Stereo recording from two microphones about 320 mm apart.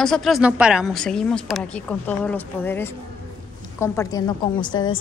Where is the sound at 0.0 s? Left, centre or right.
Centre.